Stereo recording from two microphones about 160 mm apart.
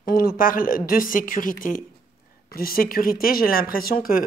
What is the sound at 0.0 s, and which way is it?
Speech, 70° left (ahead or behind).